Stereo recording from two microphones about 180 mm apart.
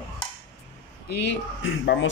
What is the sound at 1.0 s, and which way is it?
Speech, 70° left (ahead or behind).